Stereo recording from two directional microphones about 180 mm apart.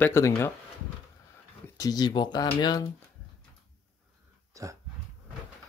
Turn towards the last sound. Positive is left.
turn(degrees=-20)  # may be behind; listen again after turning